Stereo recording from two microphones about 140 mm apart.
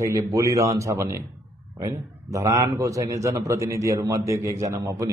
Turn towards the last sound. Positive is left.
turn(degrees=-25)  # may be behind; listen again after turning